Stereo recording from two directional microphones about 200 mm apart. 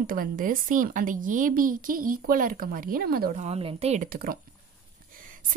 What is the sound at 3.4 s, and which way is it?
Speech, 30° right (ahead or behind).